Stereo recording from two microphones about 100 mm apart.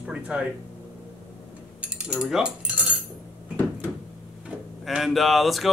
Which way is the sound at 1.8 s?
10° right (ahead or behind).